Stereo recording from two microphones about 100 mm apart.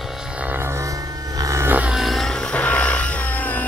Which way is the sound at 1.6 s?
15° right (ahead or behind).